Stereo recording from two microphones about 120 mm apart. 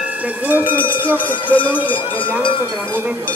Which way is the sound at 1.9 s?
45° left (ahead or behind).